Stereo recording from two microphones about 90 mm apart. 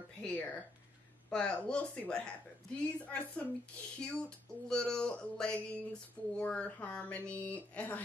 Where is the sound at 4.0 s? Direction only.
10° left (ahead or behind).